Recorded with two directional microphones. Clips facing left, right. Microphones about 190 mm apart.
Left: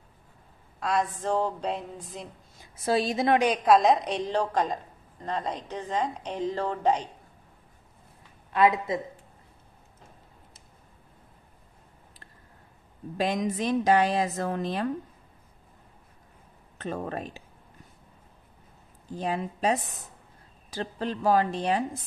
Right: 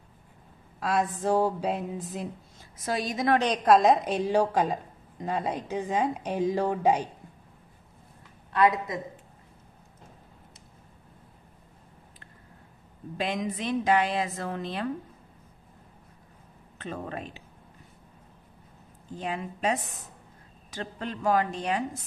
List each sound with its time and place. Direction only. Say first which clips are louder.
0.7 s a sound: even; centre (ahead or behind)
2.8 s a woman's voice: left 4 dB; 30° left (ahead or behind)
3.3 s a sound: even; 5° left (ahead or behind)
5.2 s a woman's voice: right 2 dB; 10° right (ahead or behind)
8.5 s a woman's voice: left 1 dB; 25° left (ahead or behind)
13.2 s a woman's voice: left 3 dB; 40° left (ahead or behind)
16.7 s a woman's voice: left 3 dB; 40° left (ahead or behind)
19.1 s a woman's voice: left 3 dB; 35° left (ahead or behind)